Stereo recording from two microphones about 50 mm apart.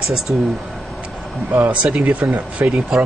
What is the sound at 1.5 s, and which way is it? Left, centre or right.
Speech, right.